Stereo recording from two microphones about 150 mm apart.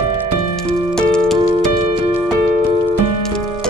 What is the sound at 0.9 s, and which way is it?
Music, 5° left (ahead or behind).